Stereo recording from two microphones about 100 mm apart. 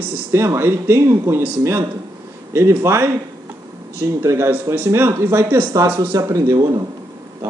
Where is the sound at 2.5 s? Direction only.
25° right (ahead or behind).